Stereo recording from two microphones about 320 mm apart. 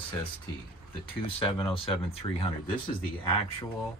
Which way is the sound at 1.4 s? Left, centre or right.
Centre.